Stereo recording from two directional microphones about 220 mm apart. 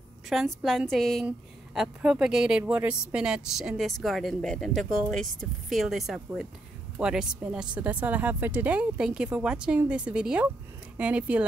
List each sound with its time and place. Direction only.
0.3 s a woman's voice: centre (ahead or behind)